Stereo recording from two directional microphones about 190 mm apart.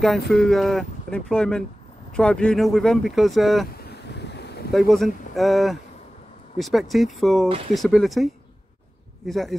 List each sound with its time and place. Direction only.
0.0 s speech: centre (ahead or behind)
4.1 s boat: 60° left (ahead or behind)
4.7 s speech: centre (ahead or behind)